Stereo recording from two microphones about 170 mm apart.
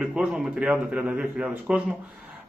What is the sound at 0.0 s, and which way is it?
A man's voice, centre (ahead or behind).